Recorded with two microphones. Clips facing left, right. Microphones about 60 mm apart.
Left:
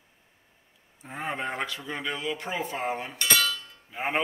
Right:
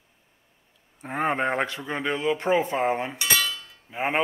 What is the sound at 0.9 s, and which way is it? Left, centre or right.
Speech, right.